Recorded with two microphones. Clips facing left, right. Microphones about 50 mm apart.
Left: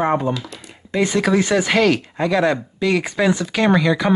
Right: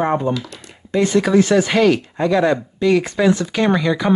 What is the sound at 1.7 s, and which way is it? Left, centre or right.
Speech, centre.